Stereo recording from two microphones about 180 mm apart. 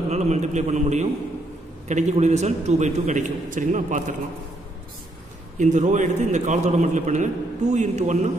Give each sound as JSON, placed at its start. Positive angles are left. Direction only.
{"t": 0.1, "sound": "a man's voice", "side_deg": -40}
{"t": 5.6, "sound": "a man's voice", "side_deg": -40}